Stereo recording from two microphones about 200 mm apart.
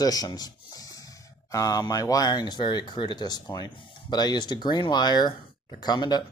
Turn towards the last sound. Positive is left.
turn(degrees=20)  # may be behind; listen again after turning